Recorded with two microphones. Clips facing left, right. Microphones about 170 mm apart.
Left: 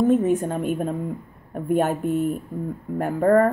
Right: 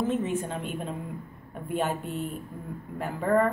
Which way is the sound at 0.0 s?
40° left (ahead or behind).